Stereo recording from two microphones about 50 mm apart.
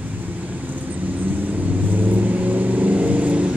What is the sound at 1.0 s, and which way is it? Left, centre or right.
Vehicle, right.